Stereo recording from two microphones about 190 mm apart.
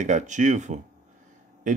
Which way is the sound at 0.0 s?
40° right (ahead or behind).